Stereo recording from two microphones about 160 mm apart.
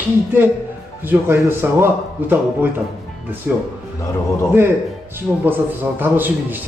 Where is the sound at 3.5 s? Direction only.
10° right (ahead or behind).